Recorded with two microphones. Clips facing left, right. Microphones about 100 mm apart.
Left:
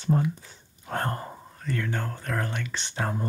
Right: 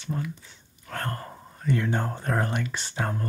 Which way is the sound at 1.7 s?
20° right (ahead or behind).